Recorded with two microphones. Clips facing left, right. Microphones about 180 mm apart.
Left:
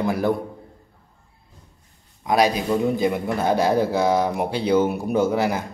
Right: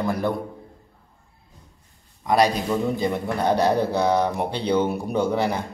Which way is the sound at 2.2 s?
Centre (ahead or behind).